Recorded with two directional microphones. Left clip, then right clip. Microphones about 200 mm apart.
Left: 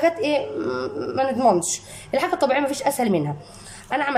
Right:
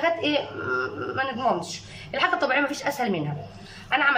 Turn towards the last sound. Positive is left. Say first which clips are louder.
# right 2 dB
turn(degrees=30)  # may be behind; listen again after turning